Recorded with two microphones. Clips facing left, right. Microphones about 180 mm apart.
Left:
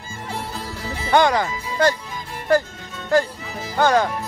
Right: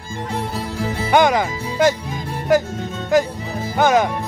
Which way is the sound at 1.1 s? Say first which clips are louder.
Right 1 dB; 20° right (ahead or behind).